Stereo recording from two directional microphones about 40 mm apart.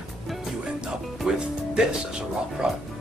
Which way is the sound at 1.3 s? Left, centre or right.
Centre.